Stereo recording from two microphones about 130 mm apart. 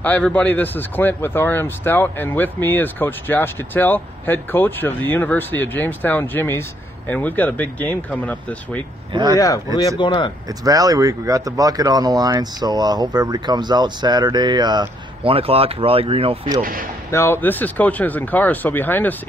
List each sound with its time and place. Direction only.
0.0 s a man's voice: 10° left (ahead or behind)
9.1 s speech: 35° right (ahead or behind)
9.9 s speech: 35° left (ahead or behind)
10.6 s speech: 30° right (ahead or behind); by 16.3 s 45° right (ahead or behind)
16.6 s speech: 90° right
17.1 s a man's voice: 20° left (ahead or behind)